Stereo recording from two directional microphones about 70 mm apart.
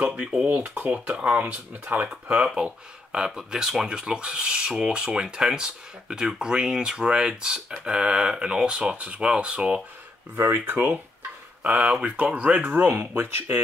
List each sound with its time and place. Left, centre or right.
0.0 s speech: centre; by 13.6 s right